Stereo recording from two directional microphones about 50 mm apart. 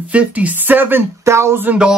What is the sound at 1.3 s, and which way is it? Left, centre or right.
Speech, right.